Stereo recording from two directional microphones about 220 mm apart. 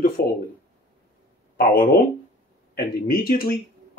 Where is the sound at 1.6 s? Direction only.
45° left (ahead or behind).